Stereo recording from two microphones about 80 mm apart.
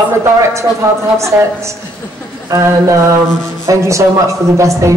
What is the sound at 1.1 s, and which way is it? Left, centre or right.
A man's voice, right.